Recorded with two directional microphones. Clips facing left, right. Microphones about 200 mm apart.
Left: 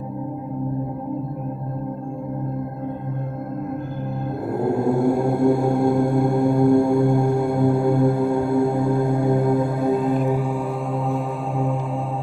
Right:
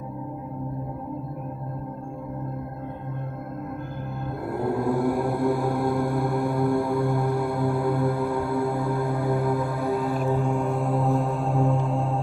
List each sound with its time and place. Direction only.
4.5 s mantra: 25° left (ahead or behind); by 12.0 s centre (ahead or behind)